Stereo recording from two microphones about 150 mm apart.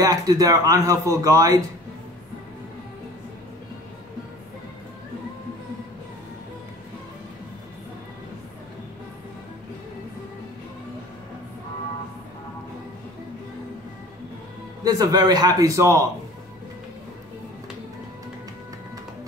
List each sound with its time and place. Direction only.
0.0 s speech: 25° right (ahead or behind)
14.9 s speech: 25° right (ahead or behind)